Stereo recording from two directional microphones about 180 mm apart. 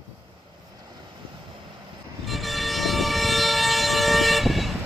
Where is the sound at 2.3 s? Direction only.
Centre (ahead or behind).